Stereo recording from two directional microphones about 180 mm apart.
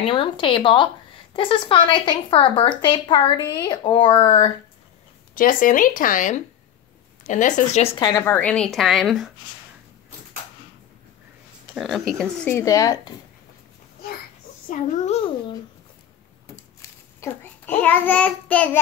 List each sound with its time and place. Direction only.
0.0 s speech: 30° left (ahead or behind)
5.3 s a woman's voice: 50° left (ahead or behind); by 9.3 s centre (ahead or behind)
11.7 s speech: centre (ahead or behind)
12.2 s speech: 15° left (ahead or behind)
14.7 s a child's voice: 35° left (ahead or behind)
17.2 s a child's voice: 10° left (ahead or behind)